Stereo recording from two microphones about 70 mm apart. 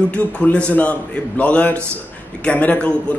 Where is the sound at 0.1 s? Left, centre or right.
Centre.